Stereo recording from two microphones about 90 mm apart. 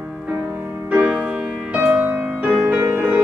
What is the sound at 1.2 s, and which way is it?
Music, 10° right (ahead or behind).